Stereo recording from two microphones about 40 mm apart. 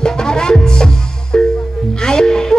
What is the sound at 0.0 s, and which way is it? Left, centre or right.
Music, centre.